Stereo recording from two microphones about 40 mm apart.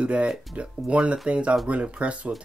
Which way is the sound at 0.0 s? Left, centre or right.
Right.